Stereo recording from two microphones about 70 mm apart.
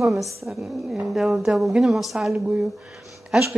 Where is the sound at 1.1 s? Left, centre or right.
Centre.